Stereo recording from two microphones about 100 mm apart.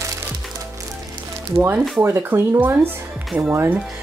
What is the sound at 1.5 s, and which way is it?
Speech, 20° right (ahead or behind).